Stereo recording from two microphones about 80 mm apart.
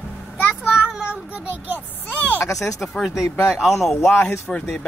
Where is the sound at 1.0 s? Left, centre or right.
Right.